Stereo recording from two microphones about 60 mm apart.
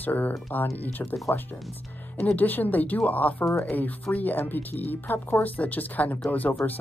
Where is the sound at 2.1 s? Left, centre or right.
Centre.